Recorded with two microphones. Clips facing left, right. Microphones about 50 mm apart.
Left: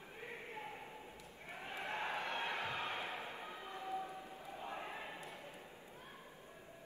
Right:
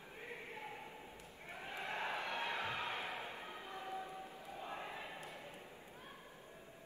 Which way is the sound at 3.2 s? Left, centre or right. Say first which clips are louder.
Left 1 dB; left.